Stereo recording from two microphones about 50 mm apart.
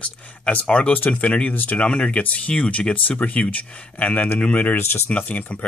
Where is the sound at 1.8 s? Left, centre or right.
Left.